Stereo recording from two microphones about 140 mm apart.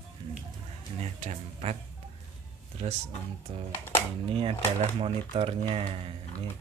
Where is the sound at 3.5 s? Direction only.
40° right (ahead or behind).